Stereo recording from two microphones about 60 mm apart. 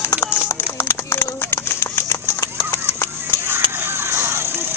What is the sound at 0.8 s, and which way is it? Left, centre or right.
Clip-clop, left.